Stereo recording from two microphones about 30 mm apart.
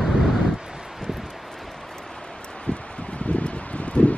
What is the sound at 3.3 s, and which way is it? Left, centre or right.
Rustling leaves, left.